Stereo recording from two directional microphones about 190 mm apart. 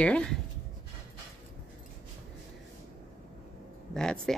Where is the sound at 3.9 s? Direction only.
5° left (ahead or behind).